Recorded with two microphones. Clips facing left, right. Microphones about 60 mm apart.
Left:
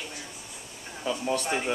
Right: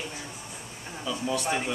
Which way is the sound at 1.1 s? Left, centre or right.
Left.